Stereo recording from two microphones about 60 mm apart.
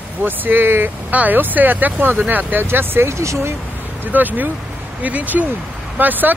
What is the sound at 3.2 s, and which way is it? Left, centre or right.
Speech, right.